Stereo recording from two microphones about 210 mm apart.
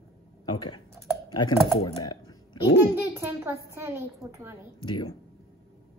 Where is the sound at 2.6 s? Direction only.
55° left (ahead or behind).